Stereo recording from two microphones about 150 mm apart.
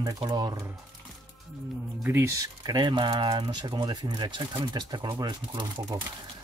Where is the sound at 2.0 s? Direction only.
15° right (ahead or behind).